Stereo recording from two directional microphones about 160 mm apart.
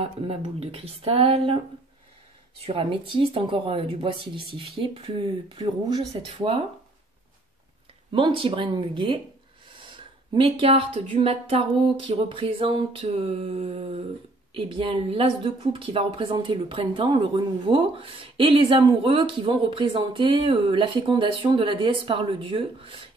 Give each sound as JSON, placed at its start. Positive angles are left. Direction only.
{"t": 0.0, "sound": "speech", "side_deg": -40}
{"t": 2.6, "sound": "speech", "side_deg": -35}
{"t": 8.1, "sound": "speech", "side_deg": -30}